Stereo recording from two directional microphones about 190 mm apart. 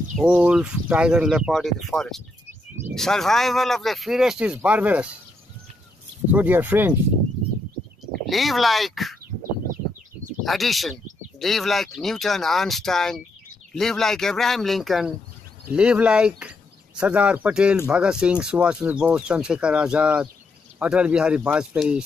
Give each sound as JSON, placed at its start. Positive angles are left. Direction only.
{"t": 0.2, "sound": "speech", "side_deg": -5}
{"t": 6.3, "sound": "speech", "side_deg": -10}
{"t": 8.3, "sound": "speech", "side_deg": 0}
{"t": 10.4, "sound": "speech", "side_deg": 0}